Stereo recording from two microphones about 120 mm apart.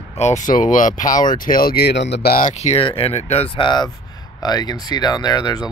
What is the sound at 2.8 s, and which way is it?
Speech, 50° left (ahead or behind).